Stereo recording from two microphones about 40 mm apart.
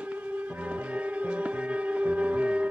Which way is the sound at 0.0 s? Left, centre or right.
Right.